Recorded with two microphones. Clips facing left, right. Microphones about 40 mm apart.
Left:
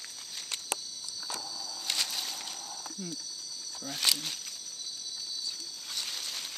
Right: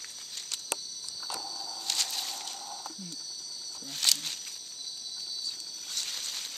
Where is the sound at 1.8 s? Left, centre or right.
Centre.